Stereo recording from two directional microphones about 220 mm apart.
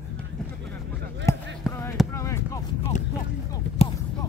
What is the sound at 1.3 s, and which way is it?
Basketball bounce, 15° left (ahead or behind).